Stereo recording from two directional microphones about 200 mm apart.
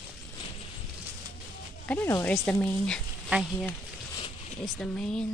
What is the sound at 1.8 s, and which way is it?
Speech, 10° left (ahead or behind).